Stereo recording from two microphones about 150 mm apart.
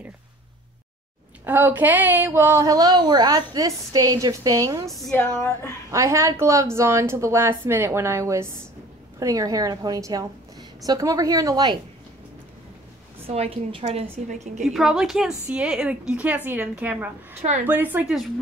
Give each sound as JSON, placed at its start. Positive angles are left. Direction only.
{"t": 1.4, "sound": "speech", "side_deg": -15}
{"t": 4.8, "sound": "a woman's voice", "side_deg": 0}
{"t": 5.1, "sound": "a sound", "side_deg": 15}
{"t": 5.9, "sound": "speech", "side_deg": -20}
{"t": 13.3, "sound": "a woman's voice", "side_deg": -40}
{"t": 14.7, "sound": "a woman's voice", "side_deg": -5}
{"t": 17.4, "sound": "a woman's voice", "side_deg": -50}
{"t": 17.6, "sound": "a woman's voice", "side_deg": -10}